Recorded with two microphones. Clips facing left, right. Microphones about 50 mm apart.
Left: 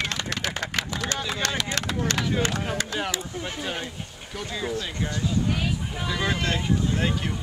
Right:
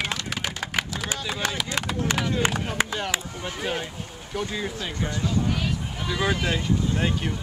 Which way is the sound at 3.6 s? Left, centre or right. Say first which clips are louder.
Right 2 dB; centre.